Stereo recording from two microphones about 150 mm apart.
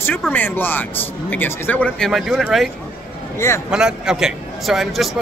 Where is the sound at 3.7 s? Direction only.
5° right (ahead or behind).